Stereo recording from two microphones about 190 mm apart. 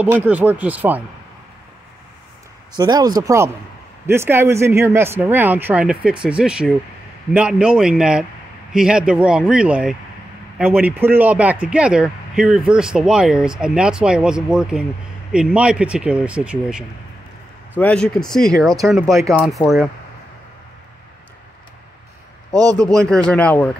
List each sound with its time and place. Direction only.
0.0 s speech: 10° right (ahead or behind)
2.7 s speech: 20° right (ahead or behind); by 16.8 s 5° right (ahead or behind)
17.7 s speech: 5° left (ahead or behind)
22.5 s speech: 20° right (ahead or behind)
22.8 s speech: 5° left (ahead or behind)